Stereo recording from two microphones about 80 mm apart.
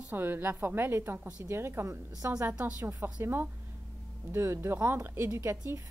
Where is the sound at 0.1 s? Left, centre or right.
Right.